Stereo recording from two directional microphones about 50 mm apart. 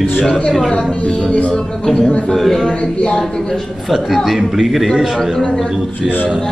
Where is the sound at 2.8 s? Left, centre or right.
Left.